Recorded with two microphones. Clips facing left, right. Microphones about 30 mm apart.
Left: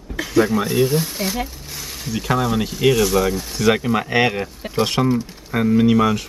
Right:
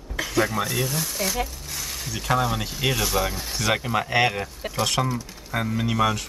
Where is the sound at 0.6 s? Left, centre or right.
Centre.